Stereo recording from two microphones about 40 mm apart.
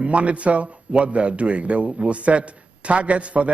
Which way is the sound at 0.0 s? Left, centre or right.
Right.